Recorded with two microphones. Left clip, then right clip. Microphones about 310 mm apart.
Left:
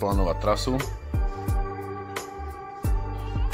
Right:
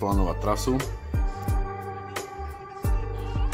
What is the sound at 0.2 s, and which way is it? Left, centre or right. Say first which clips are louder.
Speech: left 2 dB; centre.